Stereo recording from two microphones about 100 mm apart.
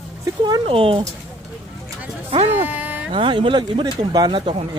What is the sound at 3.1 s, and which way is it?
Speech, 60° right (ahead or behind).